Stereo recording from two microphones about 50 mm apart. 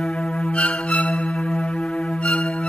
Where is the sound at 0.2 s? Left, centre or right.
Centre.